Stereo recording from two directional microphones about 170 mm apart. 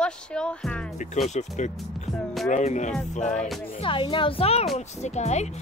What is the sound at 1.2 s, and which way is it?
Speech, 45° left (ahead or behind).